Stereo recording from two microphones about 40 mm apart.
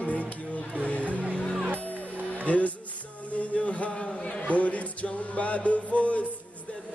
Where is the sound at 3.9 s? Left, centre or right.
Centre.